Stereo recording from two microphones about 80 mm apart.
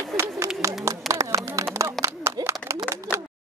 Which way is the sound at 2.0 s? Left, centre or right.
Centre.